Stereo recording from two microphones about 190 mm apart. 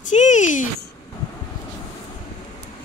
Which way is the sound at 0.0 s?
40° left (ahead or behind).